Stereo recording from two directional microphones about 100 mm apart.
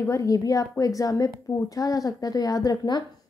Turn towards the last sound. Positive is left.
turn(degrees=45)  # may be behind; listen again after turning